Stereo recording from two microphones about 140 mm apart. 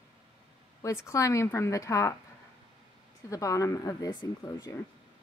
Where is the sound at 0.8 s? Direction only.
20° left (ahead or behind).